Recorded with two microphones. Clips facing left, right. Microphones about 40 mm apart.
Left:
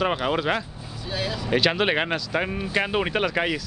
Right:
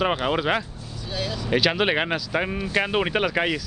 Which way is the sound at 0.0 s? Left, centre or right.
Centre.